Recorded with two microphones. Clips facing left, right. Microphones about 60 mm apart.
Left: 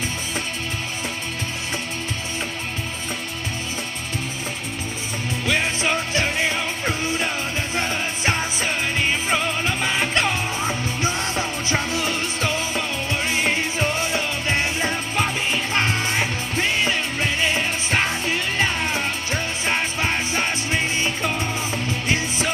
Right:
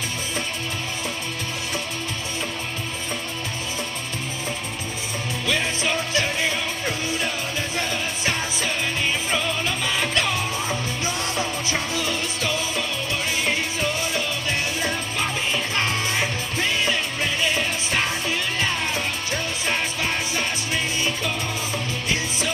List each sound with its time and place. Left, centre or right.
5.5 s music: left